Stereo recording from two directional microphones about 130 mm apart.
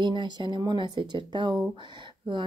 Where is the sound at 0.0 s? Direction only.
35° right (ahead or behind).